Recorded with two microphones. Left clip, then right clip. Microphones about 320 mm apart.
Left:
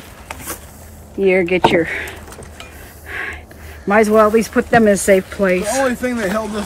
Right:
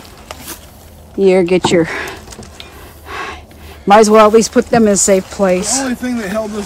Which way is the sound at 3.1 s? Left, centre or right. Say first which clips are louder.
Right 1 dB; centre.